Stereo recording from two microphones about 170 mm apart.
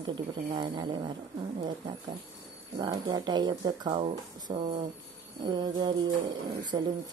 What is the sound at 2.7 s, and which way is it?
Speech, 25° right (ahead or behind).